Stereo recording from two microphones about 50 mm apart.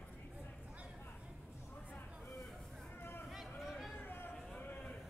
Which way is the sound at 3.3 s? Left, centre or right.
Centre.